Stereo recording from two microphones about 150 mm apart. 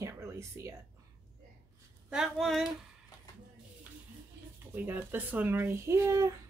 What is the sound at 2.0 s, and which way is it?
Speech, 5° right (ahead or behind).